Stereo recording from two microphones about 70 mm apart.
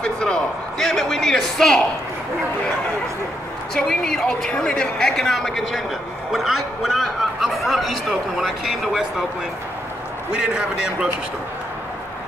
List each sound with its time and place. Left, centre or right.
0.0 s a man's voice: centre
3.7 s a man's voice: centre
10.3 s a man's voice: centre